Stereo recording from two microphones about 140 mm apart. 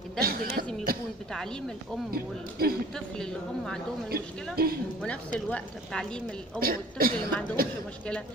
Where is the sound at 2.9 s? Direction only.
5° left (ahead or behind).